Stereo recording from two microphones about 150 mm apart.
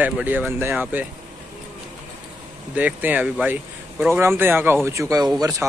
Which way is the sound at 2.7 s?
10° right (ahead or behind).